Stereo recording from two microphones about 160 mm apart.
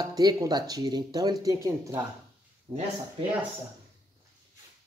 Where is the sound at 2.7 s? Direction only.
40° right (ahead or behind).